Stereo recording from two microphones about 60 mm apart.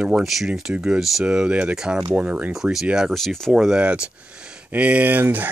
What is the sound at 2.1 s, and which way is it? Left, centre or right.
Speech, right.